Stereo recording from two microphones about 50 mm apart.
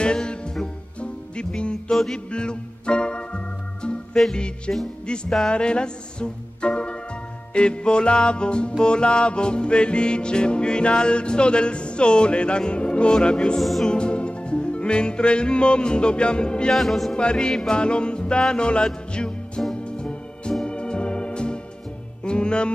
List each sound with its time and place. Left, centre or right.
0.0 s music: centre
1.9 s music: centre
2.3 s organ: centre
4.2 s music: centre
13.6 s music: centre
13.8 s music: centre
16.7 s music: centre
17.1 s music: centre
19.7 s organ: centre
22.2 s music: centre